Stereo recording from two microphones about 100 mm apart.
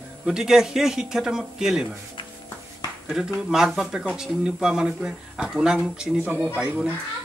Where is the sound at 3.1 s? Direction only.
5° right (ahead or behind).